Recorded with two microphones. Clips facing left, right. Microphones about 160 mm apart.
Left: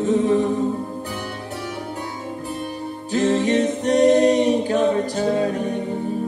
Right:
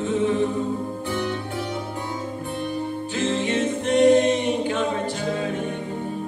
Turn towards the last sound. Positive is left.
turn(degrees=40)  # may be behind; listen again after turning